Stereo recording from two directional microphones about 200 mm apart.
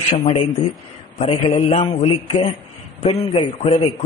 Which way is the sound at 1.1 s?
30° left (ahead or behind).